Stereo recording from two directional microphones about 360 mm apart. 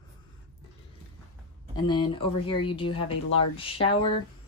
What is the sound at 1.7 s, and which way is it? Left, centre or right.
Speech, centre.